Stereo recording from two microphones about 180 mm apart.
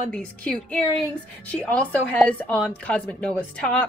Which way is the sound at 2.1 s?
10° left (ahead or behind).